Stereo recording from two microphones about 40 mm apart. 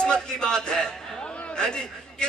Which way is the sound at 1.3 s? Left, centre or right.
Left.